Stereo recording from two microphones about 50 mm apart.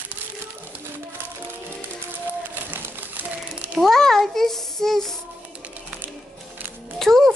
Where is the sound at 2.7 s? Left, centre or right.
Right.